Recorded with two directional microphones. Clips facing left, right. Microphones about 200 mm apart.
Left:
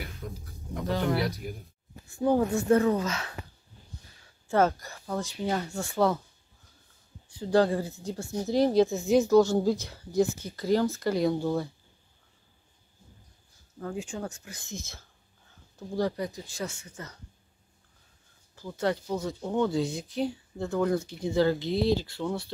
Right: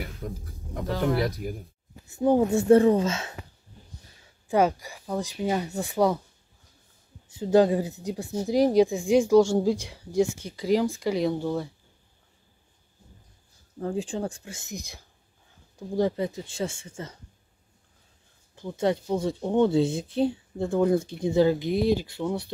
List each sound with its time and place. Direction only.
0.2 s speech: 45° right (ahead or behind)
0.8 s speech: centre (ahead or behind)
2.0 s speech: 20° right (ahead or behind)
4.5 s speech: 15° right (ahead or behind)
7.3 s speech: 20° right (ahead or behind)
11.1 s speech: 5° left (ahead or behind)
13.7 s speech: 30° right (ahead or behind)
18.5 s speech: 20° right (ahead or behind)